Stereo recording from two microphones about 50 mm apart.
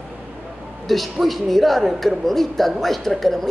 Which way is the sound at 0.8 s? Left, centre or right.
Centre.